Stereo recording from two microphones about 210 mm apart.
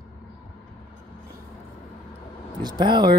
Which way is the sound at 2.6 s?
20° right (ahead or behind).